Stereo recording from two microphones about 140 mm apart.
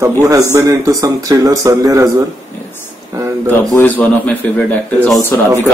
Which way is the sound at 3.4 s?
15° left (ahead or behind).